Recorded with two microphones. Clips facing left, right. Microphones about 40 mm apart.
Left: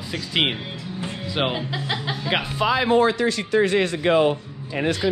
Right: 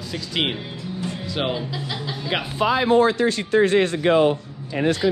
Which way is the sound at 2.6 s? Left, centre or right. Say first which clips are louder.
Right 2 dB; left.